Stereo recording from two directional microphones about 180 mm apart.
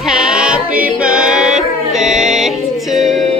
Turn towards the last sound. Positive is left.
turn(degrees=0)  # may be behind; listen again after turning